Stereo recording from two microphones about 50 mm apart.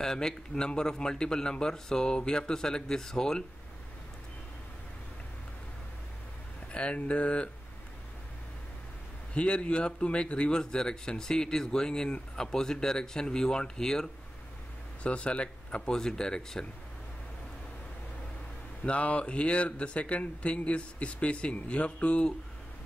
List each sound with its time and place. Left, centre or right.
0.0 s speech: centre
6.7 s speech: left
9.3 s speech: left
15.0 s speech: left
18.9 s speech: left